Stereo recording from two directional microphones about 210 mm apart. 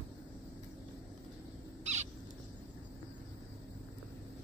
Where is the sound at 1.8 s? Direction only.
35° right (ahead or behind).